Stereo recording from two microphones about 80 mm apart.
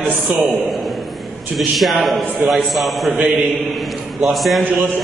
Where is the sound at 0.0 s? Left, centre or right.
Right.